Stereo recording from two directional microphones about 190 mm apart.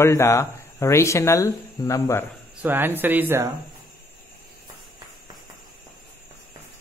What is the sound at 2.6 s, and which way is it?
Speech, 10° right (ahead or behind).